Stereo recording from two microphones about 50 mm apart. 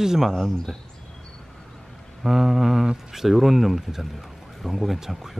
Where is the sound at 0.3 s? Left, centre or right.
Centre.